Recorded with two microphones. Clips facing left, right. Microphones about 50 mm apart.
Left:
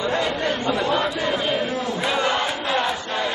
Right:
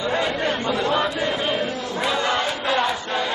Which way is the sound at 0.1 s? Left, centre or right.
Centre.